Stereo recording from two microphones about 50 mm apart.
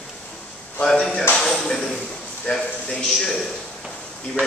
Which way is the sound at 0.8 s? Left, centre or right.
Centre.